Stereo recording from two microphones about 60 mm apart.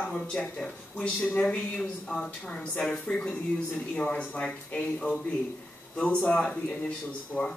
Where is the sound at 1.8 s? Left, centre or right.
Centre.